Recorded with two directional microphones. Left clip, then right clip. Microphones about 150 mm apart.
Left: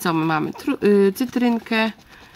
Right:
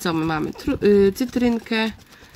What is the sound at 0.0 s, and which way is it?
Speech, 10° left (ahead or behind).